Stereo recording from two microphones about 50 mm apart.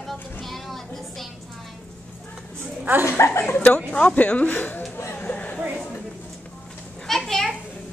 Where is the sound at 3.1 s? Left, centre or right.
Left.